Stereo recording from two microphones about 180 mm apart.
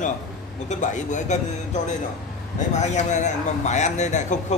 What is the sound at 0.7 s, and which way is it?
A man's voice, 45° left (ahead or behind).